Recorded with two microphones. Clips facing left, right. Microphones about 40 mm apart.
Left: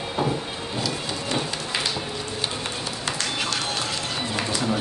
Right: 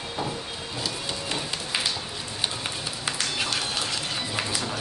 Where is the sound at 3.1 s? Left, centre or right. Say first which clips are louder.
Left 1 dB; centre.